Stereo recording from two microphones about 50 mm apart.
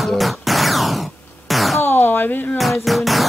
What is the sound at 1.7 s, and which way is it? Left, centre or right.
Door, left.